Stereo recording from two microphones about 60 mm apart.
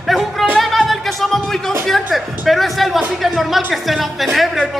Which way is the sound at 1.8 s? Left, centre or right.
Centre.